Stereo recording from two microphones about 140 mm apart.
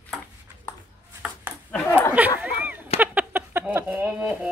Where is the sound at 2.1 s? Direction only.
10° right (ahead or behind).